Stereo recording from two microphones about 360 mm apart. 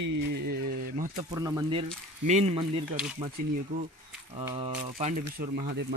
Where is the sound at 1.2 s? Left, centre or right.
Centre.